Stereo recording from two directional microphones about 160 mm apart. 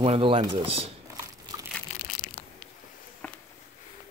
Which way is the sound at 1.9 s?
45° left (ahead or behind).